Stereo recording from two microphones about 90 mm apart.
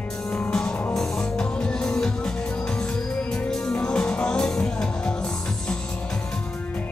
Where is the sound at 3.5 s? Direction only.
10° left (ahead or behind).